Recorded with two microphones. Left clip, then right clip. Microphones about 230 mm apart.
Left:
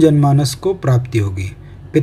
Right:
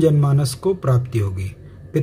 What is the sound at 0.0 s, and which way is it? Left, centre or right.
Speech, left.